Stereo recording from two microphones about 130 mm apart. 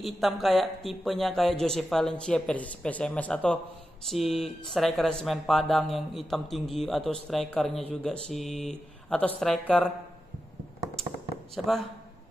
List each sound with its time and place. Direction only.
0.0 s speech: centre (ahead or behind)
11.5 s speech: centre (ahead or behind)